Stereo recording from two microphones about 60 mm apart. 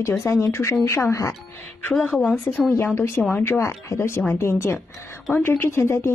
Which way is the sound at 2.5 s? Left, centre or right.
Left.